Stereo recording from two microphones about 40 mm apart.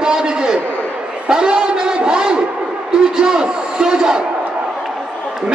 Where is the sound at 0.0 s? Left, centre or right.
Centre.